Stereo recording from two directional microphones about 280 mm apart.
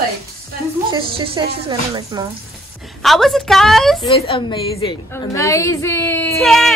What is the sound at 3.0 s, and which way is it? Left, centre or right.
Speech, centre.